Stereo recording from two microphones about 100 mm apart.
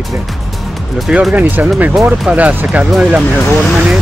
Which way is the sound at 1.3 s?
15° right (ahead or behind).